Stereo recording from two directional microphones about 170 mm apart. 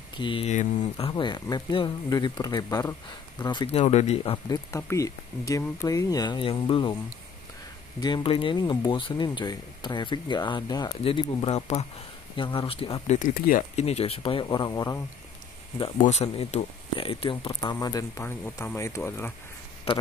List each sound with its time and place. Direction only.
0.2 s speech: 30° left (ahead or behind)
4.6 s speech: 15° left (ahead or behind)
8.0 s speech: 25° left (ahead or behind); by 13.8 s 50° left (ahead or behind)
13.8 s speech: 35° left (ahead or behind); by 15.0 s 20° left (ahead or behind)
16.0 s speech: 40° left (ahead or behind)
17.6 s speech: 20° left (ahead or behind)